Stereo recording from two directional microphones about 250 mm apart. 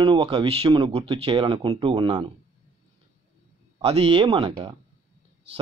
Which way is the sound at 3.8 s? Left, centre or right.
Right.